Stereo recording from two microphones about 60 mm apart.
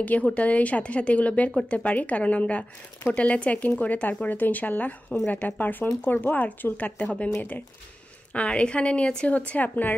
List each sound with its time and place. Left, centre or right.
0.0 s speech: left
8.3 s speech: centre